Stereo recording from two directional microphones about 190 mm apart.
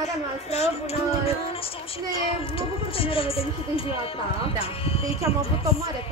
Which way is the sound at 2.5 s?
30° left (ahead or behind).